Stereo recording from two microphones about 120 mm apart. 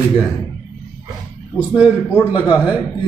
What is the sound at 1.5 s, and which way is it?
Speech, 10° right (ahead or behind).